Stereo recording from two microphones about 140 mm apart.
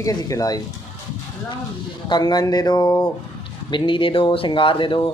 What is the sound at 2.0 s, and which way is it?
Speech, 30° left (ahead or behind).